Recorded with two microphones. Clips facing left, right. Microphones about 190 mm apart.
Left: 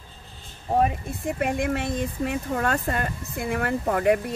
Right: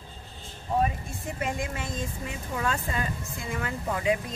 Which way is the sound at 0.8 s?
55° left (ahead or behind).